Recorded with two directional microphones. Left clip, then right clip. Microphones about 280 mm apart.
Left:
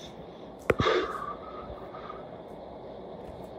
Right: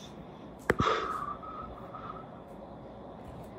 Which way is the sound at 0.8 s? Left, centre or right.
Left.